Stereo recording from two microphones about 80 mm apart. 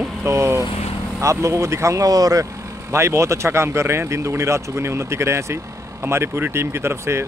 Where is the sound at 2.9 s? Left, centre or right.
Right.